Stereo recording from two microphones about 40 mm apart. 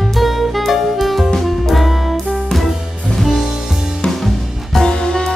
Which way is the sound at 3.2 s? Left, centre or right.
Centre.